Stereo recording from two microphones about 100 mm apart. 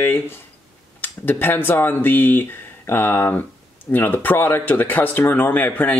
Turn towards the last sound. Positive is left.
turn(degrees=20)  # may be behind; listen again after turning